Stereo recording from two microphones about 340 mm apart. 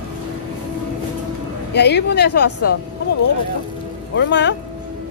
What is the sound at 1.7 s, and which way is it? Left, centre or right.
Speech, left.